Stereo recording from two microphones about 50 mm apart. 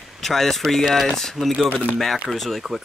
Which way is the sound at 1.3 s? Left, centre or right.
Centre.